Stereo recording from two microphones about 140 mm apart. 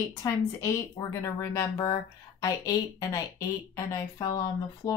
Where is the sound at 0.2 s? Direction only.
25° left (ahead or behind).